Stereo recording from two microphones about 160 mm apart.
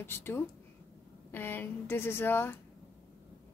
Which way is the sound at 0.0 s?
15° left (ahead or behind).